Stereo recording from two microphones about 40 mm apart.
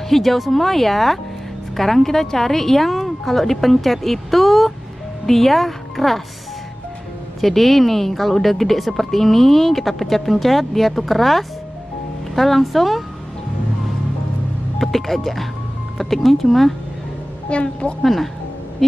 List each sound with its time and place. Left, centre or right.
0.1 s speech: centre
7.3 s speech: centre
14.8 s speech: centre
17.5 s a woman's voice: left
18.0 s speech: centre
18.8 s a sound: centre